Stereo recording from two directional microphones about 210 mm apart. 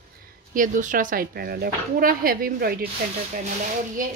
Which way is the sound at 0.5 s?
40° right (ahead or behind).